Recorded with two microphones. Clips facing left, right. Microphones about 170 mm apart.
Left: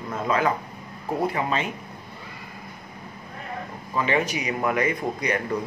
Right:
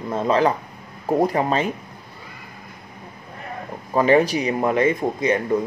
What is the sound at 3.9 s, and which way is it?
A man's voice, 40° right (ahead or behind).